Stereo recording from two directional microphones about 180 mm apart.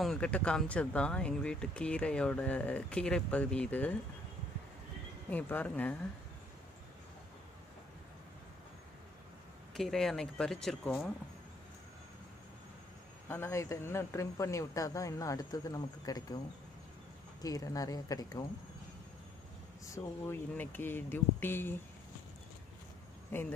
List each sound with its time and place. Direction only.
0.0 s speech: 5° left (ahead or behind)
5.3 s speech: 10° left (ahead or behind)
9.8 s speech: centre (ahead or behind)
13.3 s speech: 15° left (ahead or behind)
17.4 s speech: 20° left (ahead or behind)
19.9 s speech: 15° left (ahead or behind)
23.3 s speech: 15° left (ahead or behind)